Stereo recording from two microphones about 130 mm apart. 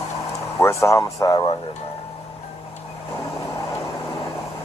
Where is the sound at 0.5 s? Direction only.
20° left (ahead or behind).